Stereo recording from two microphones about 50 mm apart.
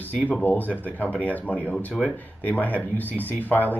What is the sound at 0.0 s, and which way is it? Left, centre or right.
Speech, left.